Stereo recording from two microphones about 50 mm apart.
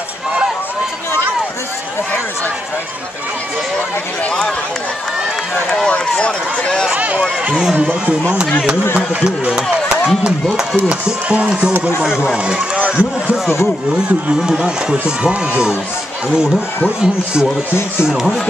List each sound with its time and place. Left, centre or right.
5.9 s speech: left
7.0 s speech: right
9.2 s speech: centre
10.9 s speech: right
14.4 s speech: centre
17.0 s speech: centre